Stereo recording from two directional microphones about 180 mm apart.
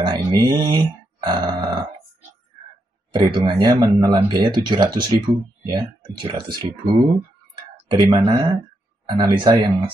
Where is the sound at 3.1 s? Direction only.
30° right (ahead or behind).